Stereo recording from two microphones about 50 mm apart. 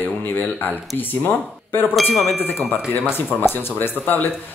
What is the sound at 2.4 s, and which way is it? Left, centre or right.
Speech, left.